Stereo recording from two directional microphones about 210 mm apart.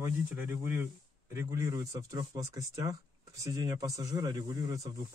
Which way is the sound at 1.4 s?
15° right (ahead or behind).